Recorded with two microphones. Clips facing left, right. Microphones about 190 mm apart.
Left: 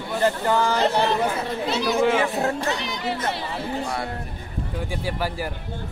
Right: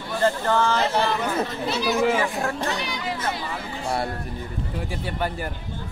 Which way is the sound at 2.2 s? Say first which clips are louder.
Left 2 dB; 25° left (ahead or behind).